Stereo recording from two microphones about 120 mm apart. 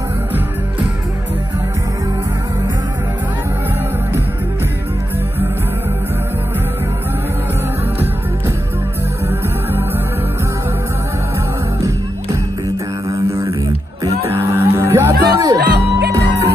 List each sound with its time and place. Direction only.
9.3 s music: 20° right (ahead or behind)
13.1 s a sound: 25° right (ahead or behind)
14.0 s music: 25° right (ahead or behind)